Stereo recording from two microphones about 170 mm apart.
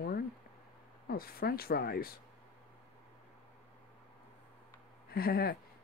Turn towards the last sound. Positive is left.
turn(degrees=60)  # may be behind; listen again after turning